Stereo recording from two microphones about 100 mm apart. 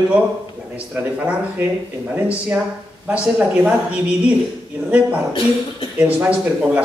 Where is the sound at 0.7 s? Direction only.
15° right (ahead or behind).